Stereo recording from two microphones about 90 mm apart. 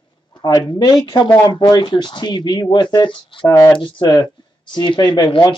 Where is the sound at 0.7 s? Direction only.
50° left (ahead or behind).